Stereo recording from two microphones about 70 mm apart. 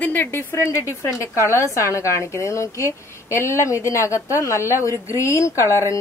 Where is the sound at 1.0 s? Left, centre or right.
Left.